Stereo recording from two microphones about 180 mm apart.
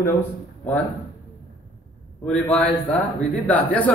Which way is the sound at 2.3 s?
5° left (ahead or behind).